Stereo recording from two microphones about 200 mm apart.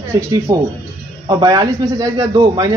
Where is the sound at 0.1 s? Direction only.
15° right (ahead or behind).